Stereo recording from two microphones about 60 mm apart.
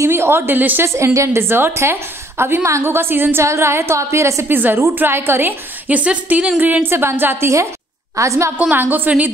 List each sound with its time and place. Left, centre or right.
0.0 s a woman's voice: right
0.8 s a woman's voice: right
4.5 s a woman's voice: right
5.9 s a woman's voice: right
8.2 s a woman's voice: right
8.7 s a woman's voice: right